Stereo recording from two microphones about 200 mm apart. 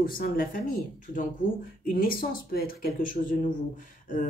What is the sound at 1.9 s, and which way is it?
Speech, 45° left (ahead or behind).